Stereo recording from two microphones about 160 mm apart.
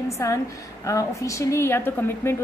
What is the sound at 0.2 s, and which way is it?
A woman's voice, 20° left (ahead or behind).